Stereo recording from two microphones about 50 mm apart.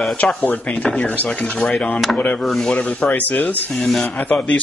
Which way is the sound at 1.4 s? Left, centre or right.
Centre.